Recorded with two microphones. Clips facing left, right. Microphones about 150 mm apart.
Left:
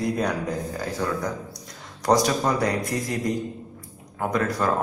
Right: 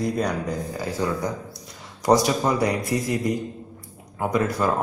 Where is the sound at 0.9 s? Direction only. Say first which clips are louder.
Right 2 dB; 10° right (ahead or behind).